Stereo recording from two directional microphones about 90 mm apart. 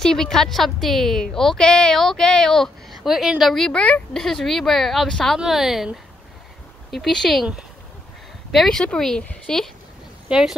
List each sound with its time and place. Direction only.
0.0 s a woman's voice: 5° left (ahead or behind)
6.9 s a woman's voice: 5° left (ahead or behind)
8.5 s a woman's voice: 5° left (ahead or behind)
10.2 s speech: 5° right (ahead or behind)